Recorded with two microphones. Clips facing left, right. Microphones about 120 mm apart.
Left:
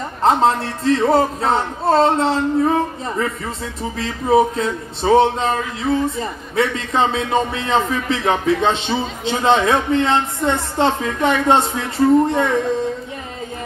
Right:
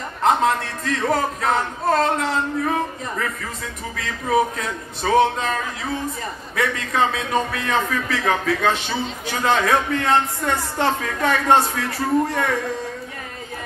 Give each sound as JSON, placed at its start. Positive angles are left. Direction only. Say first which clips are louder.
{"t": 0.2, "sound": "a man's voice", "louder": "left 3 dB", "side_deg": 30}